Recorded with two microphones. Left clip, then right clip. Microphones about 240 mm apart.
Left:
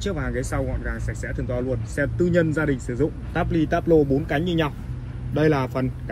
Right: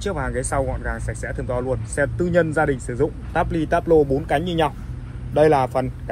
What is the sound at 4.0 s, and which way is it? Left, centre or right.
Speech, right.